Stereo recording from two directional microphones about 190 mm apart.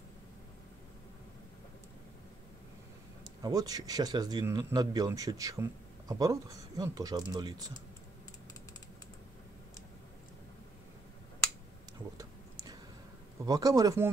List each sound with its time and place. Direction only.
3.4 s speech: 20° right (ahead or behind)
12.2 s a sound: 20° right (ahead or behind)
13.5 s speech: 20° right (ahead or behind)